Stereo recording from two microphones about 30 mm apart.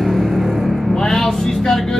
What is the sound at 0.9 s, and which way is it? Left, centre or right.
Vehicle, left.